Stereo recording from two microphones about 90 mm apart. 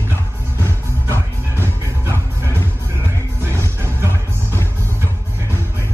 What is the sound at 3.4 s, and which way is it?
Music, 30° right (ahead or behind).